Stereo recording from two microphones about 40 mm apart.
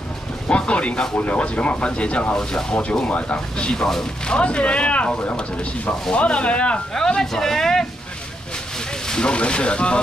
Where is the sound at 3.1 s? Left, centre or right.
Left.